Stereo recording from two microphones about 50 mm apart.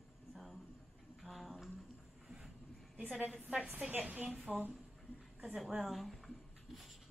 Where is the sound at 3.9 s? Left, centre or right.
Right.